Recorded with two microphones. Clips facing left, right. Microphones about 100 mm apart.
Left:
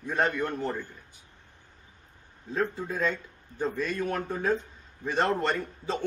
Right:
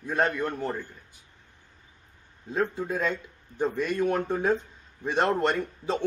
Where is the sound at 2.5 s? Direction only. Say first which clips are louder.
Right 2 dB; 15° right (ahead or behind).